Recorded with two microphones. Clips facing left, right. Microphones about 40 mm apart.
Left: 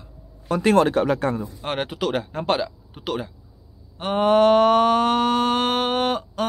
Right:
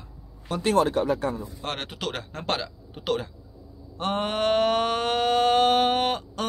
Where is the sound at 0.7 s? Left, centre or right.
Left.